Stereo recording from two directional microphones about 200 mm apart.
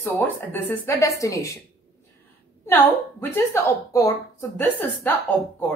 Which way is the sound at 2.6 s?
10° left (ahead or behind).